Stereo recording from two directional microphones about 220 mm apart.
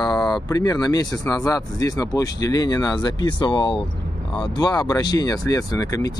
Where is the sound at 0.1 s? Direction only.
Centre (ahead or behind).